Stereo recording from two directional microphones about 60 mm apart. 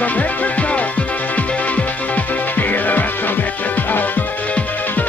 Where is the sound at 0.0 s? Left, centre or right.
Left.